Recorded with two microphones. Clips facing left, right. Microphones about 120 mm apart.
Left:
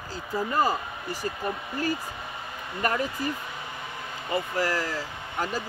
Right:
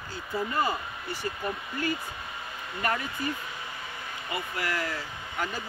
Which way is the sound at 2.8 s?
40° left (ahead or behind).